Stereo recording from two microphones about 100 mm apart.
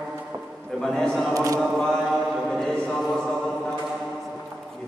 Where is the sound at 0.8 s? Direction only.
5° left (ahead or behind).